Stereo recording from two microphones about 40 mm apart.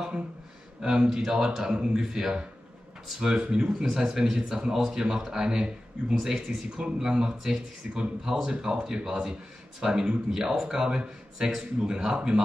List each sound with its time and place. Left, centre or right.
0.8 s speech: centre